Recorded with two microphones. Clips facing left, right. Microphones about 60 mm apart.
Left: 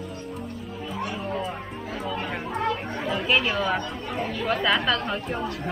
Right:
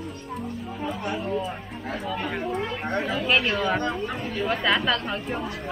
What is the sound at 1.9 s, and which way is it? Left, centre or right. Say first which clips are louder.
Speech: right 1 dB; centre.